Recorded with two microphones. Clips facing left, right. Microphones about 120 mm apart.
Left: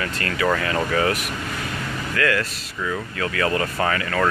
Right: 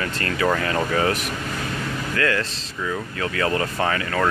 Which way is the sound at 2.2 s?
30° right (ahead or behind).